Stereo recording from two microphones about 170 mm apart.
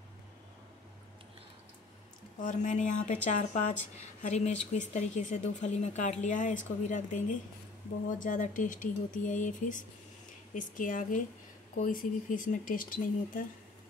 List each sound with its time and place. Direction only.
2.4 s speech: 45° left (ahead or behind)